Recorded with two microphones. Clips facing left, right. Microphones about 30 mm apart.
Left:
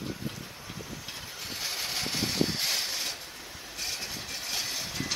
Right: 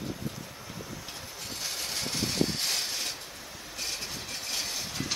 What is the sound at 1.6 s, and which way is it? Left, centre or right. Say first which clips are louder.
Vehicle: left 2 dB; centre.